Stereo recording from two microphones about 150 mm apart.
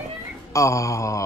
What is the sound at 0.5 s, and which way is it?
Mantra, 20° left (ahead or behind).